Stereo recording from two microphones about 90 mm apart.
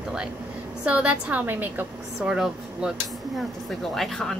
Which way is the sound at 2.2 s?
5° right (ahead or behind).